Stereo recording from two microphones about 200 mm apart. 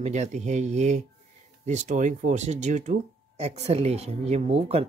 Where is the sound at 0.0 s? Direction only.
35° right (ahead or behind).